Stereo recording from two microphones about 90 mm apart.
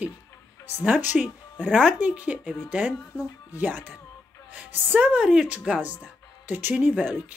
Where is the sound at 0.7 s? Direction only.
20° right (ahead or behind).